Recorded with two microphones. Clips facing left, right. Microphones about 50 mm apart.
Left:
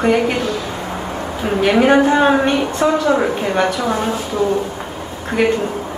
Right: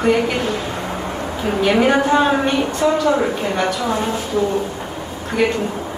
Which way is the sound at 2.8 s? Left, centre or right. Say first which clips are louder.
Left 1 dB; left.